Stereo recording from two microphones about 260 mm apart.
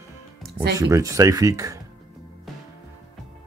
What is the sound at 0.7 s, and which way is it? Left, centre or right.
Speech, centre.